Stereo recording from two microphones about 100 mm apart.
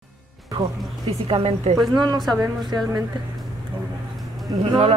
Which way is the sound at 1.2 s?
65° right (ahead or behind).